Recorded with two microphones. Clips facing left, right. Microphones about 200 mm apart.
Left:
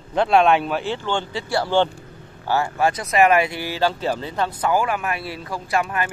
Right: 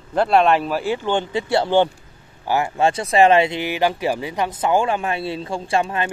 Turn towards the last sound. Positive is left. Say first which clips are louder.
# right 2 dB
turn(degrees=-25)  # may be behind; listen again after turning